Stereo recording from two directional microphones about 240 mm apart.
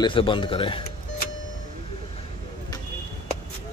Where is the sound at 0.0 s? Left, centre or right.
Left.